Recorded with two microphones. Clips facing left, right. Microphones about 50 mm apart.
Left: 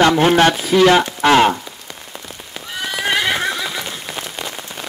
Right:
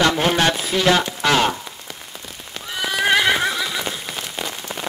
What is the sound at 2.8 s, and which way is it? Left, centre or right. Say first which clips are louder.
Horse: right 2 dB; centre.